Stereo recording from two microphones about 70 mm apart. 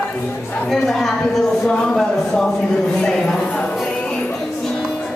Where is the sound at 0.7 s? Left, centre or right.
Centre.